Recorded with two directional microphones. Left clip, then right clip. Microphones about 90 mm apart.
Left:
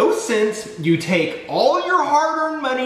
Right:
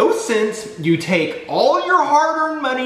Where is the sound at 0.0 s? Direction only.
15° right (ahead or behind).